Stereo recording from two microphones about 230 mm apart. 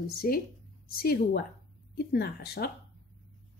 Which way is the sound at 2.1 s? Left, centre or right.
Left.